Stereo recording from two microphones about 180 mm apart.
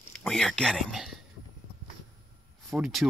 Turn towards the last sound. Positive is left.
turn(degrees=0)  # may be behind; listen again after turning